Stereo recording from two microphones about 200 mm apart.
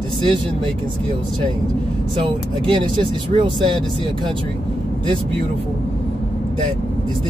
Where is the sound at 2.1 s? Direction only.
25° right (ahead or behind).